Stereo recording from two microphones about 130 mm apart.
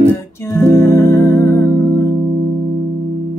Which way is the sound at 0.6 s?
20° left (ahead or behind).